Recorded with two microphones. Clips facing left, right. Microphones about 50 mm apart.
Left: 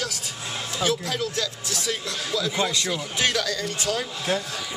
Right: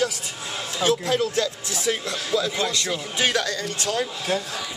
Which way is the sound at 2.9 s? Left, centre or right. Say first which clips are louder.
Right 1 dB; centre.